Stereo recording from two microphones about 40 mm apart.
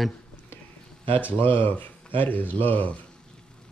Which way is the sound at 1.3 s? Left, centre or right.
Left.